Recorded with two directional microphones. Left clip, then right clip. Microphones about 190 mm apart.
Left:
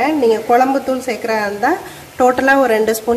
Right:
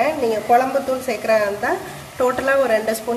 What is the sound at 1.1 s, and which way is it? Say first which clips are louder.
A woman's voice: right 3 dB; 35° left (ahead or behind).